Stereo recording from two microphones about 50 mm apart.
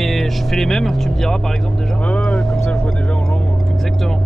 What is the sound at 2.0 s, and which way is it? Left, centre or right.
Vehicle, left.